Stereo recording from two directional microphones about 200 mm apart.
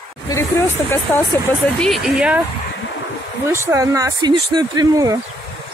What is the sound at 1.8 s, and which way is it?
Speech, centre (ahead or behind).